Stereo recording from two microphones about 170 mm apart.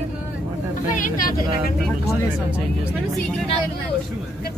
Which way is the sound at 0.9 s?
55° left (ahead or behind).